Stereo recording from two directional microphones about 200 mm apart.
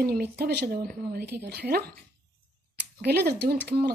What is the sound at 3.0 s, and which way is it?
Speech, 50° right (ahead or behind).